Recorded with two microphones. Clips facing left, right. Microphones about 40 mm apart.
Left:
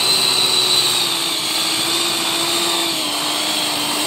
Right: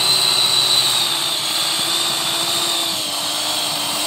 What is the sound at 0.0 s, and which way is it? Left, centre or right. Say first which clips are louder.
Vehicle: even; centre.